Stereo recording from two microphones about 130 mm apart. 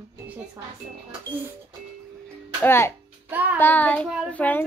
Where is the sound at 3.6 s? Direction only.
15° left (ahead or behind).